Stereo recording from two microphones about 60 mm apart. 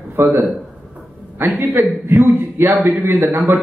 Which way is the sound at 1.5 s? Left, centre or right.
Right.